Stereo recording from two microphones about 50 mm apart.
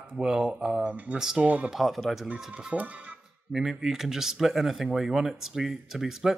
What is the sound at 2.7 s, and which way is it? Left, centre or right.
Speech, right.